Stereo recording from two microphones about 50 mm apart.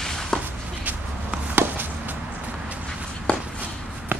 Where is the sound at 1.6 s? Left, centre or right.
Right.